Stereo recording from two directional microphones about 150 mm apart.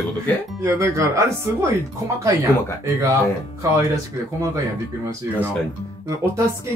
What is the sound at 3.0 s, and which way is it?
Speech, 20° right (ahead or behind).